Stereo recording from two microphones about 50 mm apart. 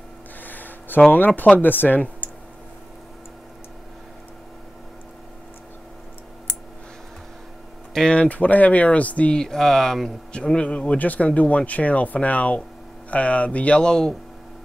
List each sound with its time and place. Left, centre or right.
0.4 s a sound: left
1.1 s speech: left
8.1 s speech: left
9.4 s speech: centre